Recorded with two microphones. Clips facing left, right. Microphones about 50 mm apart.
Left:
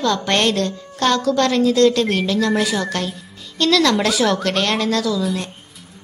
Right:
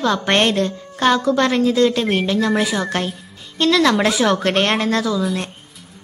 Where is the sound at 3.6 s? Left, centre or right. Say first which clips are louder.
Right 1 dB; right.